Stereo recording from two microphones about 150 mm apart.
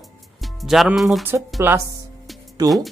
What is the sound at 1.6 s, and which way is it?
Speech, 15° right (ahead or behind).